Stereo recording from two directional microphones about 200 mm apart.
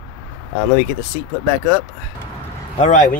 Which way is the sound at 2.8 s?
40° left (ahead or behind).